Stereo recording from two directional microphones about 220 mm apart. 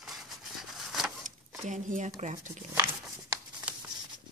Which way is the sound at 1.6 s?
35° right (ahead or behind).